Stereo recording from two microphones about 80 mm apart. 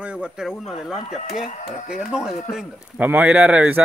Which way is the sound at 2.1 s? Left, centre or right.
Centre.